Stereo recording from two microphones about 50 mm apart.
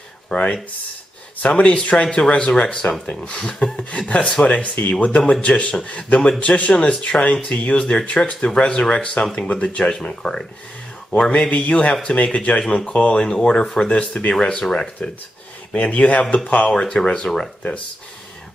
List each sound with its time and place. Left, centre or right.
0.3 s speech: centre
1.6 s speech: left
9.8 s speech: centre
15.7 s speech: left
16.7 s speech: centre